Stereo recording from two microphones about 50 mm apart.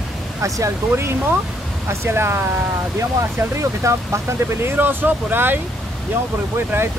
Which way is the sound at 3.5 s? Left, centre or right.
Right.